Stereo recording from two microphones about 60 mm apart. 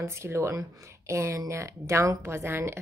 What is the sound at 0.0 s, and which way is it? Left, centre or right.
A woman's voice, right.